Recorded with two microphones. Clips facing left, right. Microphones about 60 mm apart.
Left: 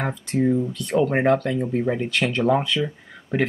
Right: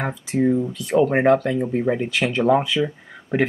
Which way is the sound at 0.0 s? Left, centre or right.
Centre.